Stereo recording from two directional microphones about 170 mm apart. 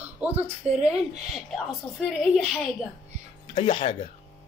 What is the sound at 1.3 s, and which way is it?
A woman's voice, centre (ahead or behind).